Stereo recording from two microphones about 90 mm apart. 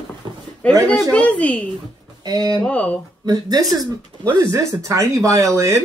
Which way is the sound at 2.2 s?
45° right (ahead or behind).